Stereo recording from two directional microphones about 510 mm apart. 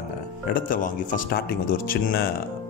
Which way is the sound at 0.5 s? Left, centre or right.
Centre.